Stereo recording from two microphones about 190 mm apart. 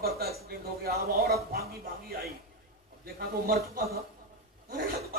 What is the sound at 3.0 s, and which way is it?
Speech, 50° right (ahead or behind).